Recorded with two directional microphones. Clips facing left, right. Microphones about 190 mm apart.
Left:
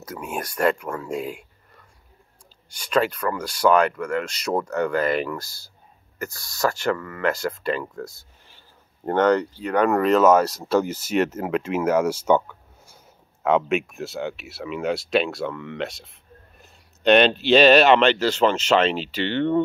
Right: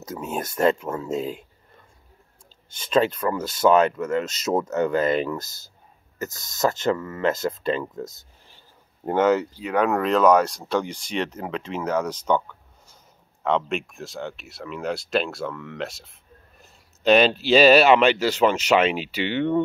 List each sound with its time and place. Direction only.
0.3 s speech: 25° right (ahead or behind)
1.2 s speech: 10° left (ahead or behind)
2.7 s speech: 25° right (ahead or behind)
9.0 s speech: 5° right (ahead or behind)